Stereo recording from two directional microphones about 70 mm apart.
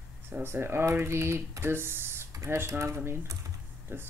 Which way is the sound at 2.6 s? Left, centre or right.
Right.